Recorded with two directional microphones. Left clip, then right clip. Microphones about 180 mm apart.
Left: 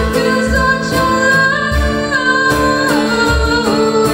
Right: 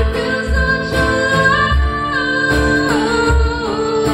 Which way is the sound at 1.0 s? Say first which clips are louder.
Left 3 dB; 45° left (ahead or behind).